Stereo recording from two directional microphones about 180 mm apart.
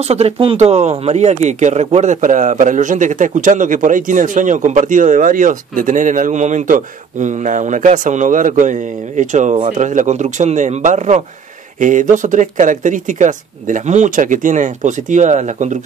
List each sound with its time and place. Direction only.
0.0 s speech: 35° right (ahead or behind)